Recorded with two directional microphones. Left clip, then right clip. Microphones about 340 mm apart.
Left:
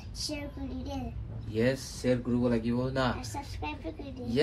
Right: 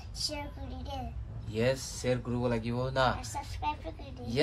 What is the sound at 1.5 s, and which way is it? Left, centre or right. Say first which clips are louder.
Speech: left 1 dB; centre.